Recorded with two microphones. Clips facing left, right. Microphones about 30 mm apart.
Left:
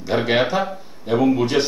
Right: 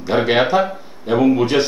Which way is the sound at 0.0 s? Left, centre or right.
Centre.